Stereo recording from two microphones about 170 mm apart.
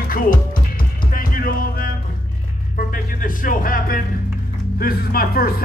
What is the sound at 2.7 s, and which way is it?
Speech, 55° left (ahead or behind).